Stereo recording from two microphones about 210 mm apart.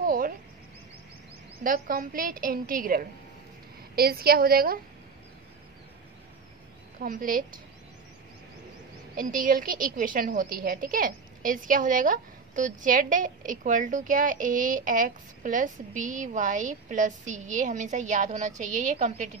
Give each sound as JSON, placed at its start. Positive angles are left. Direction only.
{"t": 0.0, "sound": "a sound", "side_deg": -45}
{"t": 1.6, "sound": "a woman's voice", "side_deg": -45}
{"t": 7.0, "sound": "a woman's voice", "side_deg": -40}
{"t": 9.1, "sound": "a woman's voice", "side_deg": -40}